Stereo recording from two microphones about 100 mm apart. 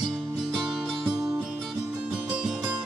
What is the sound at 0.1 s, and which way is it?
Music, 10° right (ahead or behind).